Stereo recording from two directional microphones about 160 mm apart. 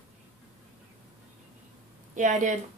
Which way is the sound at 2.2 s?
50° right (ahead or behind).